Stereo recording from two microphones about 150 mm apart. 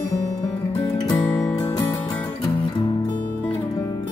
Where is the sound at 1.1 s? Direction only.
5° left (ahead or behind).